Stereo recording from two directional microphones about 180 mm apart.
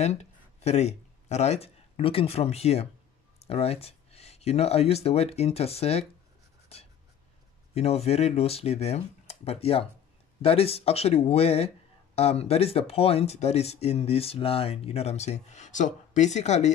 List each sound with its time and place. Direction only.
0.0 s speech: 35° left (ahead or behind)
6.7 s writing: 35° left (ahead or behind)
7.7 s speech: 35° left (ahead or behind)